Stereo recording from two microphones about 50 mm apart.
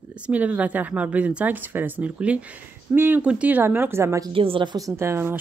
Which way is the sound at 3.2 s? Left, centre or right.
Right.